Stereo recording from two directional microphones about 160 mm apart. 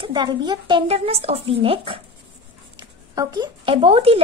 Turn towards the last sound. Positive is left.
turn(degrees=-35)  # may be behind; listen again after turning